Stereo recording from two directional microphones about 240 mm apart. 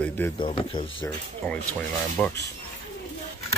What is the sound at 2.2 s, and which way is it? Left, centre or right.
Speech, centre.